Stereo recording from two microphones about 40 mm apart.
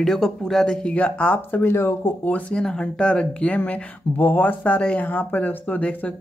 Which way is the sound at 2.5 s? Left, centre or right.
Left.